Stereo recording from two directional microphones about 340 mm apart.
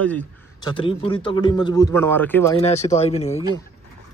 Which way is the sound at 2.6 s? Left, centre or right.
Centre.